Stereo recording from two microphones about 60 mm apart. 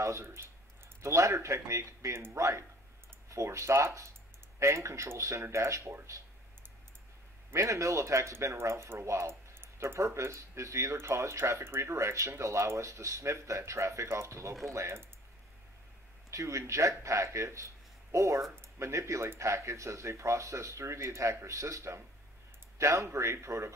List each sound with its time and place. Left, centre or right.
0.0 s speech: right
7.5 s speech: right
14.0 s speech: right
16.3 s speech: right